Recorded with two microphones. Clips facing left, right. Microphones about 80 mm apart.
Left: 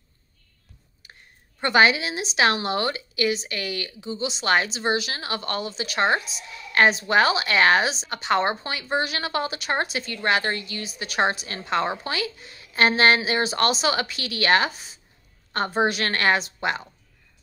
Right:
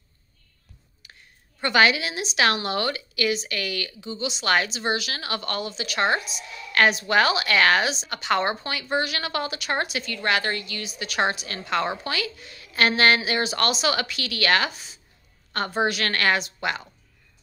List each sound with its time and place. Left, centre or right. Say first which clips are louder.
1.6 s a woman's voice: left 1 dB; left